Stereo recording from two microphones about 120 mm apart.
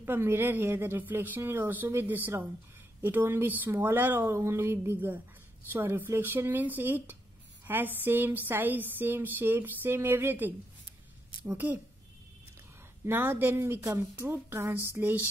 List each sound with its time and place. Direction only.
0.0 s a woman's voice: 20° right (ahead or behind)
11.5 s a woman's voice: 15° right (ahead or behind)
13.0 s a woman's voice: 20° right (ahead or behind)